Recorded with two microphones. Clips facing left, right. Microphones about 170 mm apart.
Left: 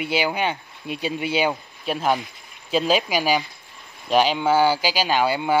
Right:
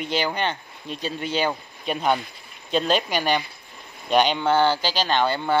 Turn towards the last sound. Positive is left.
turn(degrees=10)  # may be behind; listen again after turning